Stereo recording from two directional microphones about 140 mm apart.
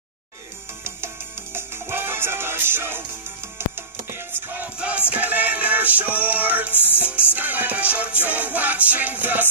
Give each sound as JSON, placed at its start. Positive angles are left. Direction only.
{"t": 0.8, "sound": "music", "side_deg": -15}
{"t": 4.1, "sound": "music", "side_deg": -15}
{"t": 6.7, "sound": "music", "side_deg": 15}
{"t": 7.3, "sound": "music", "side_deg": -10}